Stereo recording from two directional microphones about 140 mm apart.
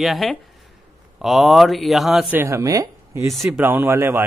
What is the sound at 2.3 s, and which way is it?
Speech, 15° right (ahead or behind).